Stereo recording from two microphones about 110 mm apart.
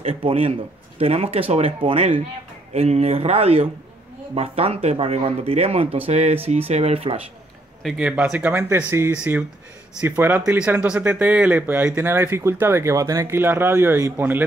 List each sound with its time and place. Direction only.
0.0 s speech: 60° right (ahead or behind)
7.8 s speech: 10° right (ahead or behind)